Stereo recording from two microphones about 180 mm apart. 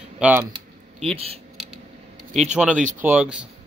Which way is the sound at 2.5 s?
5° right (ahead or behind).